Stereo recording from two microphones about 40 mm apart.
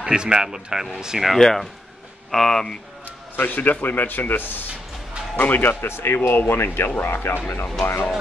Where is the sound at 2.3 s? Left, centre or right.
Centre.